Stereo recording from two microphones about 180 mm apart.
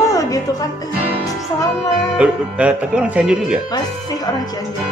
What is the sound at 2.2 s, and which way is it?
Speech, 5° right (ahead or behind).